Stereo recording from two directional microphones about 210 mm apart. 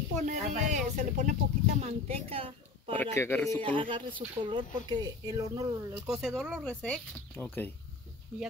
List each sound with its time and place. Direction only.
0.1 s speech: 35° right (ahead or behind)
3.2 s speech: 10° left (ahead or behind)
3.6 s speech: 25° right (ahead or behind)
6.2 s speech: centre (ahead or behind)